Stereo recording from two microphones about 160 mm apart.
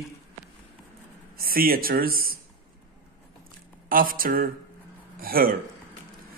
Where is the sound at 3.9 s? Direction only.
60° right (ahead or behind).